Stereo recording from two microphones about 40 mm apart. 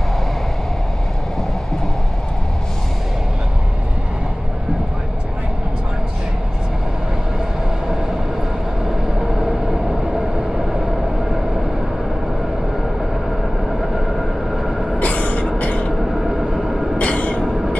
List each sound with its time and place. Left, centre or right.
9.4 s vehicle: centre
13.4 s vehicle: centre
15.0 s vehicle: left
16.2 s vehicle: centre
17.0 s train: left